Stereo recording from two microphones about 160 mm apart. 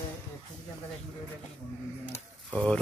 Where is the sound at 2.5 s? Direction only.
5° left (ahead or behind).